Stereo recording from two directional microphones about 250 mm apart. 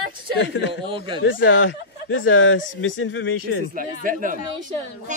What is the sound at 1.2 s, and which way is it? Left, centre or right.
Speech, left.